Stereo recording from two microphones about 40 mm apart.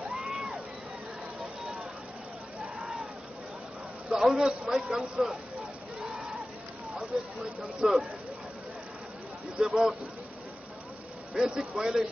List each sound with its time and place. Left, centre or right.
0.3 s crowd: centre
1.4 s a sound: centre
4.1 s a man's voice: centre
7.1 s a man's voice: centre
9.6 s a man's voice: right
11.3 s a man's voice: right